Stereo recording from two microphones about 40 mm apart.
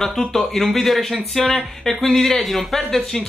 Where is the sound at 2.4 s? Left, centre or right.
Centre.